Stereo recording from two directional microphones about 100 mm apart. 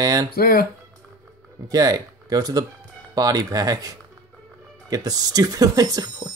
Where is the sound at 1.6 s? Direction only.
40° right (ahead or behind).